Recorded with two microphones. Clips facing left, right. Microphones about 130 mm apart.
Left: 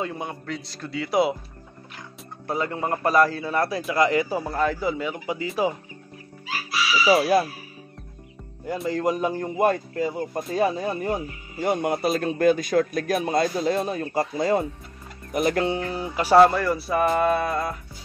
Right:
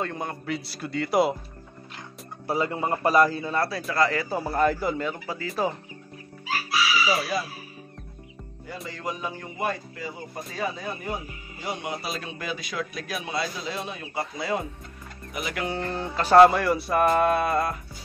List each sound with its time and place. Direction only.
0.0 s music: 5° left (ahead or behind)
2.4 s speech: 5° right (ahead or behind)
3.3 s music: centre (ahead or behind)
3.5 s speech: 20° left (ahead or behind)
4.4 s music: 5° right (ahead or behind); by 5.5 s 15° left (ahead or behind)
7.1 s speech: 60° left (ahead or behind)
8.8 s a man's voice: 45° left (ahead or behind)
15.8 s speech: 10° left (ahead or behind)
16.3 s music: 5° right (ahead or behind)